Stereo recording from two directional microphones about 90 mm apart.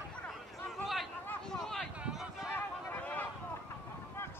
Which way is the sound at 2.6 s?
20° left (ahead or behind).